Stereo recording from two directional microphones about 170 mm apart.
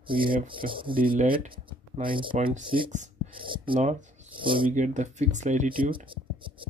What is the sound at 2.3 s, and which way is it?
Speech, 45° right (ahead or behind).